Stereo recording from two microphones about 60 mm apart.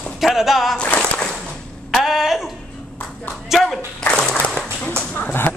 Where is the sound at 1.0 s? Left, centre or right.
Centre.